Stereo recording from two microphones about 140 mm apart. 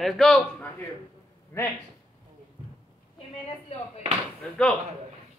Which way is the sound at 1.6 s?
20° left (ahead or behind).